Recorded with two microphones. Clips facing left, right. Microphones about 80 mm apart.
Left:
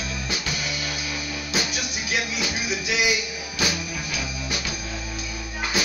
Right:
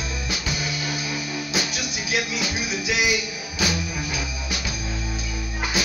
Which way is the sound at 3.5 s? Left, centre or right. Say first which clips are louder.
Right 2 dB; centre.